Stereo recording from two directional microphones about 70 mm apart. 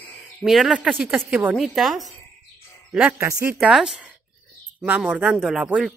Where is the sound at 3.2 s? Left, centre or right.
Right.